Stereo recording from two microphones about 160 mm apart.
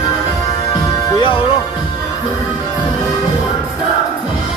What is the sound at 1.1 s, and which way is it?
Music, 35° left (ahead or behind).